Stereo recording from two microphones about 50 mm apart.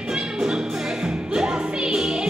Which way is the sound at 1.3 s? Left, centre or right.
Centre.